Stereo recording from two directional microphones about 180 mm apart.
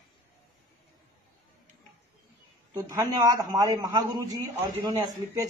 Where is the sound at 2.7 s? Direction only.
20° right (ahead or behind).